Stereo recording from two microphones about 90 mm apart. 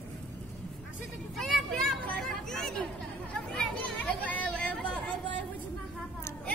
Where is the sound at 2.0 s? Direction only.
5° left (ahead or behind).